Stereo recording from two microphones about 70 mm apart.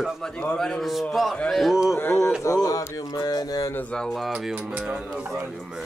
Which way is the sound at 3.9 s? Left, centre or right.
Centre.